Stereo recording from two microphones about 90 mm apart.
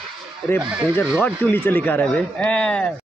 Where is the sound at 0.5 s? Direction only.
10° right (ahead or behind).